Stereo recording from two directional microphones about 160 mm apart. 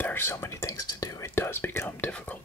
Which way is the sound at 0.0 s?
15° left (ahead or behind).